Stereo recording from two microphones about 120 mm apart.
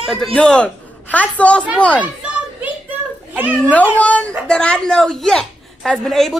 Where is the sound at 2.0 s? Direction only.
15° right (ahead or behind).